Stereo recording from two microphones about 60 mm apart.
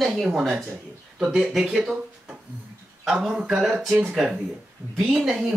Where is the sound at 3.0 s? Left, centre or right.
Centre.